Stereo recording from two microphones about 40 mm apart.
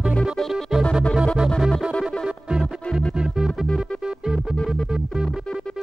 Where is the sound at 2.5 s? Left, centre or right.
Centre.